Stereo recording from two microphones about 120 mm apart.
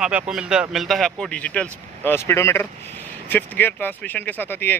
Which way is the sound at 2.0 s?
20° left (ahead or behind).